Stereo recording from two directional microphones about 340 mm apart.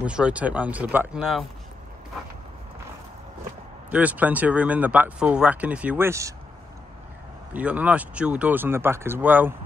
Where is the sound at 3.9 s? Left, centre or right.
Centre.